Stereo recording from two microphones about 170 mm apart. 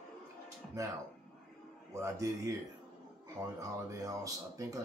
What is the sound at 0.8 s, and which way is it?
Speech, 20° right (ahead or behind).